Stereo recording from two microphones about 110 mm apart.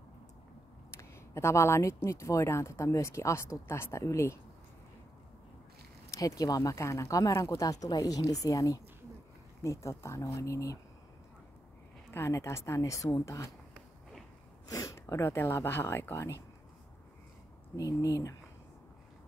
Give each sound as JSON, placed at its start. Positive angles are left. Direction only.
{"t": 0.9, "sound": "a sound", "side_deg": 25}
{"t": 2.0, "sound": "speech", "side_deg": 25}
{"t": 6.0, "sound": "speech", "side_deg": 30}
{"t": 12.1, "sound": "speech", "side_deg": 25}
{"t": 14.7, "sound": "speech", "side_deg": 30}
{"t": 17.7, "sound": "speech", "side_deg": 30}